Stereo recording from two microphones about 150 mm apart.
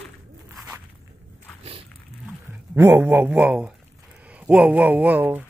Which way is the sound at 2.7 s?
15° right (ahead or behind).